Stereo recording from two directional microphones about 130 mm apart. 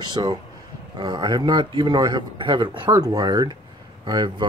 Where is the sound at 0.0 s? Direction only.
35° right (ahead or behind).